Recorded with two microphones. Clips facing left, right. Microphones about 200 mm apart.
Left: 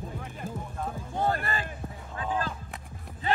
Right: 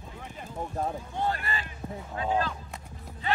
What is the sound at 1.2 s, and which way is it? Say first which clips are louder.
Basketball bounce: left 3 dB; 45° left (ahead or behind).